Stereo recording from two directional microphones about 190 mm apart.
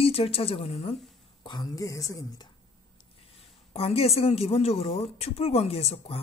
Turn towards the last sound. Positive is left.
turn(degrees=30)  # may be behind; listen again after turning